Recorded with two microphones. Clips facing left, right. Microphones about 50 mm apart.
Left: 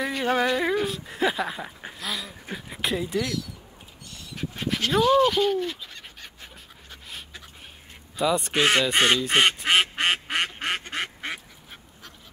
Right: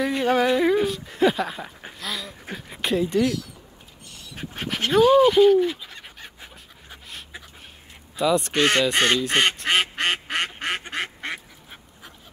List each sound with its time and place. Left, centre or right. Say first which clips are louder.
0.2 s a sound: right 2 dB; centre
0.8 s speech: right 5 dB; centre
1.8 s dog: even; centre
2.5 s speech: right 3 dB; centre
3.2 s speech: right 6 dB; right
4.4 s dog: even; right
4.9 s speech: right 5 dB; centre
8.2 s speech: right 2 dB; centre
9.6 s duck: even; centre